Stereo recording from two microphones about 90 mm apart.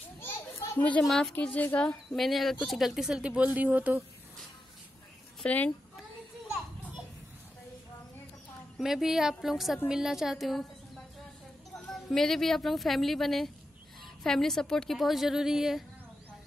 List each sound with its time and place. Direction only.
0.2 s children playing: 20° left (ahead or behind)
1.0 s a woman's voice: 5° left (ahead or behind)
1.3 s a woman's voice: 20° left (ahead or behind)
2.1 s a woman's voice: centre (ahead or behind); by 4.0 s 20° right (ahead or behind)
5.4 s speech: 15° left (ahead or behind)
8.7 s a woman's voice: 5° right (ahead or behind)
11.9 s a woman's voice: 5° left (ahead or behind)